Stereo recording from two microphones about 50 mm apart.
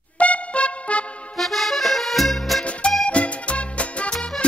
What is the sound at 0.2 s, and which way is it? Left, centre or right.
Music, left.